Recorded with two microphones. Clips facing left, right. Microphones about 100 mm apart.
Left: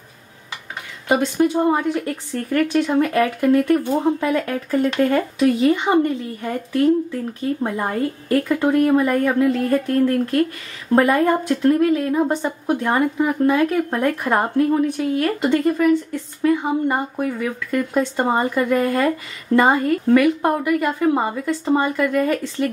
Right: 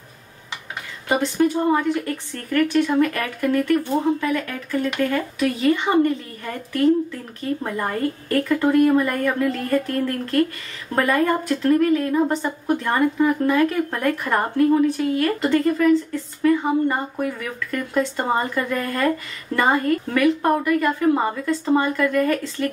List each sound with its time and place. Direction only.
1.0 s speech: 20° left (ahead or behind)